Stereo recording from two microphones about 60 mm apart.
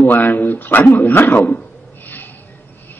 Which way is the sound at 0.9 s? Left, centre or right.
Left.